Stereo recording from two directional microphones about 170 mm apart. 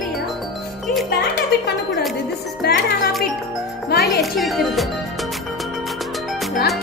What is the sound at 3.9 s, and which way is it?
Music, 70° left (ahead or behind).